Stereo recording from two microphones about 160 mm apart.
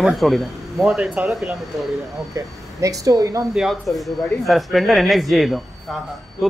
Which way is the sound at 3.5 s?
Centre (ahead or behind).